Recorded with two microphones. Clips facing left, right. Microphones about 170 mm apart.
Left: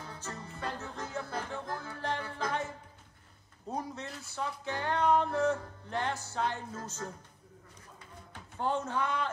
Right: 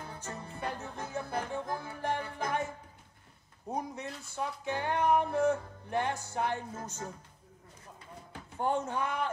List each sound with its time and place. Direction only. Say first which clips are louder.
0.1 s music: right 1 dB; 15° right (ahead or behind)
3.6 s music: right 1 dB; 15° right (ahead or behind)
8.5 s speech: right 1 dB; 15° right (ahead or behind)